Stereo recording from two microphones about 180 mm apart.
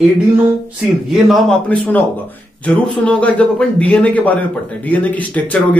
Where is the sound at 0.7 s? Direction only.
Centre (ahead or behind).